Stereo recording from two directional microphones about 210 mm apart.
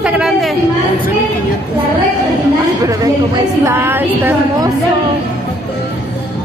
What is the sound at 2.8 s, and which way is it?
A woman's voice, 15° right (ahead or behind).